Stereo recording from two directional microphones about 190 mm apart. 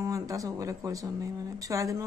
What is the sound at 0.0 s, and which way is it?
Speech, 15° right (ahead or behind).